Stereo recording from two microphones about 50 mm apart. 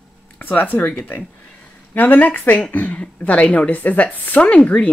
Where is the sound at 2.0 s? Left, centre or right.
Left.